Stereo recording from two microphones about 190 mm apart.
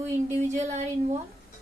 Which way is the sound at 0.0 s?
40° right (ahead or behind).